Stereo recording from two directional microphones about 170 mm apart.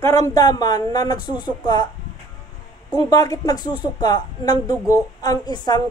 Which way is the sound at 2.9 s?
20° left (ahead or behind).